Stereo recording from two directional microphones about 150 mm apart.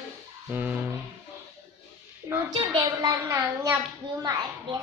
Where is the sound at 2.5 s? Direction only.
30° right (ahead or behind).